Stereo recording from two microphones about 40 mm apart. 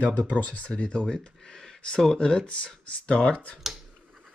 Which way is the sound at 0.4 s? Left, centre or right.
Left.